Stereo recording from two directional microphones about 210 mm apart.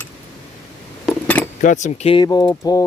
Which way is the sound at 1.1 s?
5° left (ahead or behind).